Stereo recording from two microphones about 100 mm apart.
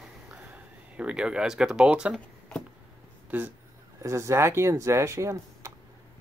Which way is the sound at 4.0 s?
30° right (ahead or behind).